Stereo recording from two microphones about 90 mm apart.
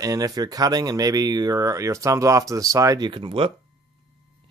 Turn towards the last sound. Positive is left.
turn(degrees=-75)  # may be behind; listen again after turning